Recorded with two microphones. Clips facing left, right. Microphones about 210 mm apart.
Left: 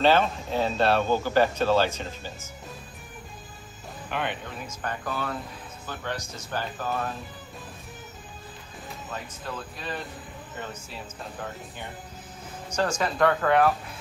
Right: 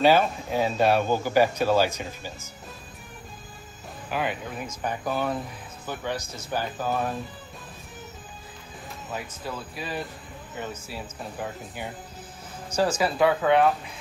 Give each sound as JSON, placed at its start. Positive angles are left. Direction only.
{"t": 0.0, "sound": "speech", "side_deg": -10}
{"t": 4.1, "sound": "speech", "side_deg": -5}
{"t": 4.8, "sound": "speech", "side_deg": -15}
{"t": 9.1, "sound": "speech", "side_deg": -10}
{"t": 12.7, "sound": "speech", "side_deg": -5}